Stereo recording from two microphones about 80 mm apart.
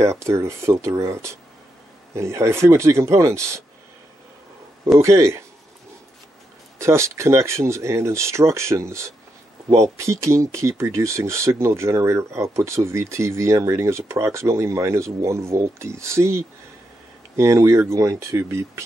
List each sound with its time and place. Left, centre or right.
0.0 s speech: right
4.9 s speech: right
6.8 s speech: right